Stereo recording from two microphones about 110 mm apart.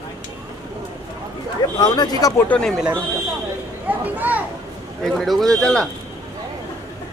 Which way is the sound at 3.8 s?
15° right (ahead or behind).